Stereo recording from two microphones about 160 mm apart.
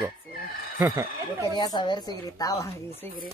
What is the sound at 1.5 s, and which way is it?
A woman's voice, 30° left (ahead or behind).